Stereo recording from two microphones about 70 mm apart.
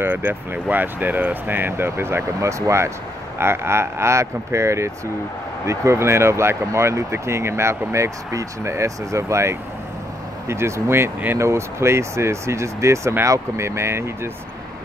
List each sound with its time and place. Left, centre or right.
0.0 s speech: right